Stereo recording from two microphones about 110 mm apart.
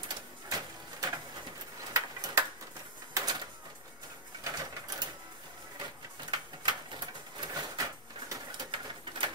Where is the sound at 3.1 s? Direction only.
35° right (ahead or behind).